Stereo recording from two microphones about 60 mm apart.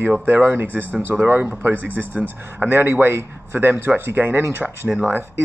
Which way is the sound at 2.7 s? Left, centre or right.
Right.